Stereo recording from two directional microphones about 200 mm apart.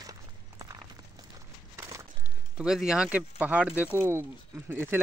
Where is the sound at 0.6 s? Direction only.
20° right (ahead or behind).